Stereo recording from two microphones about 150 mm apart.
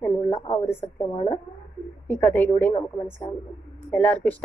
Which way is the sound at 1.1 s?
35° left (ahead or behind).